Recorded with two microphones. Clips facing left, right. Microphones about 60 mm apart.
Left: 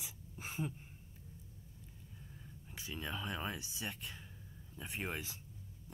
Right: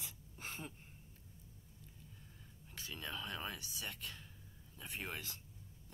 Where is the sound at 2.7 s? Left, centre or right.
Centre.